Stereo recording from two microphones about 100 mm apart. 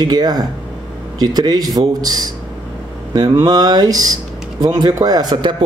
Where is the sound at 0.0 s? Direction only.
45° right (ahead or behind).